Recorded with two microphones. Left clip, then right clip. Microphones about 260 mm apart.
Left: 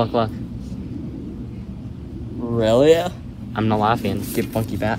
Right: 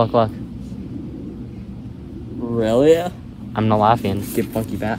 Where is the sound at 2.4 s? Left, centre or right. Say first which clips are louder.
Even; left.